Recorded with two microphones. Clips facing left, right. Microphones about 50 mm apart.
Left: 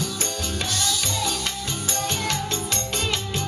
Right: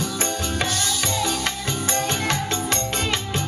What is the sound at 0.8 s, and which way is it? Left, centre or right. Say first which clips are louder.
Music: right 2 dB; right.